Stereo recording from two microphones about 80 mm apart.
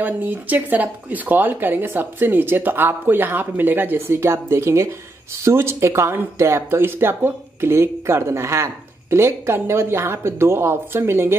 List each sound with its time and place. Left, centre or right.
0.0 s speech: right